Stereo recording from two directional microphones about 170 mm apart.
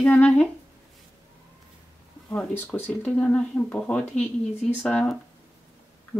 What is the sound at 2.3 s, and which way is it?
Speech, 10° left (ahead or behind).